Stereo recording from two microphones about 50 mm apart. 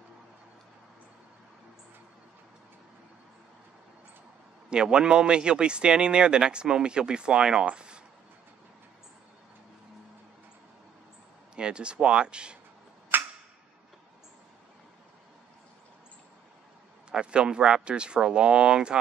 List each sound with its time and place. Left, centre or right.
4.6 s a man's voice: centre
11.5 s a man's voice: centre
13.1 s a sound: right
17.1 s a man's voice: centre